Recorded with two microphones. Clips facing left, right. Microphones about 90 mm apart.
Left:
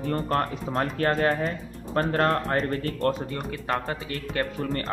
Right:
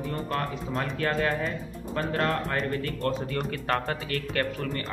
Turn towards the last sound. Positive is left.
turn(degrees=25)  # may be behind; listen again after turning